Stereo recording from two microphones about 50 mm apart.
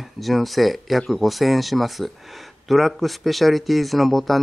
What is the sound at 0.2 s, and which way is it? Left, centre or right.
A man's voice, centre.